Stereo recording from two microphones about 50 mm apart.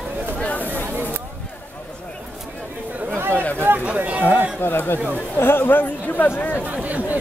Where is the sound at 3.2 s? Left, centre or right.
Right.